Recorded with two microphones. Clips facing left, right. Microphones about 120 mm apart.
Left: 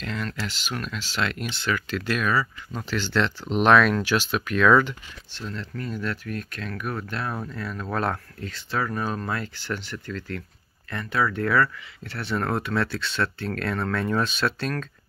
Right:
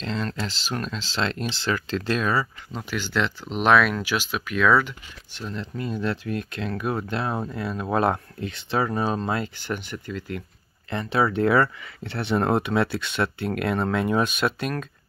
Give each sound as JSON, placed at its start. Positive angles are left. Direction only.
{"t": 0.0, "sound": "speech", "side_deg": -25}
{"t": 2.8, "sound": "speech", "side_deg": -10}
{"t": 5.4, "sound": "speech", "side_deg": -20}